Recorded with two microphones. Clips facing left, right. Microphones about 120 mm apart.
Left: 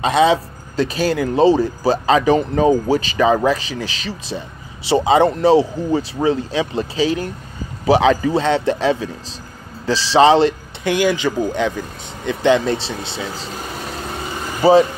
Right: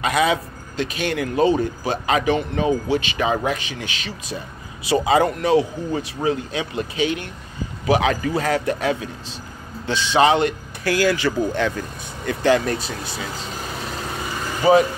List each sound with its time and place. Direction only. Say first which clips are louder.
0.0 s a man's voice: left 5 dB; 25° left (ahead or behind)
14.6 s speech: left 3 dB; 30° left (ahead or behind)